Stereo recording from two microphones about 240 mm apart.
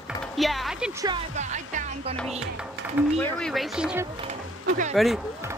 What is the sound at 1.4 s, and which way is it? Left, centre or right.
Music, right.